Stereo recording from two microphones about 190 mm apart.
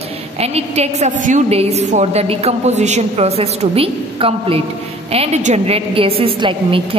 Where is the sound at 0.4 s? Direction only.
35° right (ahead or behind).